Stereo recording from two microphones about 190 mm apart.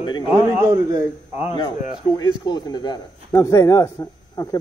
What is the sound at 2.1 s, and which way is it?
A man's voice, 20° left (ahead or behind).